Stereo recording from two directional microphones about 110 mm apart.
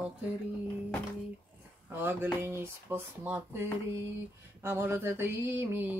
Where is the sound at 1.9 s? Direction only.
20° right (ahead or behind).